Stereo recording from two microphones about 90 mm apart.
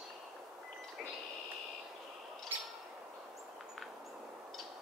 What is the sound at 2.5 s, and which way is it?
Bird, 25° right (ahead or behind).